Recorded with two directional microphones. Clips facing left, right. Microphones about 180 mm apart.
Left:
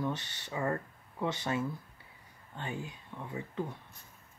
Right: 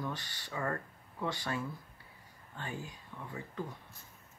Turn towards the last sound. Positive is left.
turn(degrees=20)  # may be behind; listen again after turning